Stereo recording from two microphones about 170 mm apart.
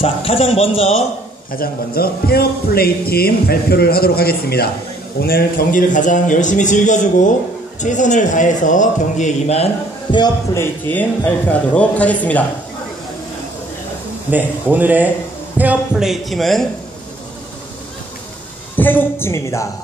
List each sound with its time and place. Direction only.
0.0 s speech: 35° left (ahead or behind)
1.5 s a man's voice: 60° left (ahead or behind); by 9.7 s 40° left (ahead or behind)
10.1 s a man's voice: 20° left (ahead or behind)
14.3 s speech: 10° right (ahead or behind)
18.8 s a man's voice: 10° left (ahead or behind)